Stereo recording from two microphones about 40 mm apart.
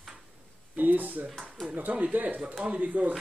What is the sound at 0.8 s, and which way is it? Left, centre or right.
A man's voice, right.